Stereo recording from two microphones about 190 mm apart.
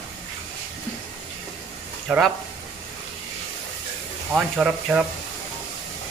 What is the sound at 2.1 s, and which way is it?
Speech, 5° right (ahead or behind).